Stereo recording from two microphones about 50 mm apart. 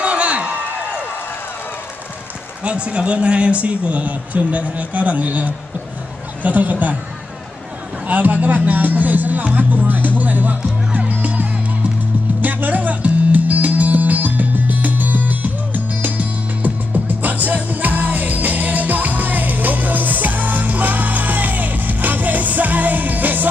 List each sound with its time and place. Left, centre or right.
0.0 s a sound: right
2.6 s a man's voice: right
8.1 s music: right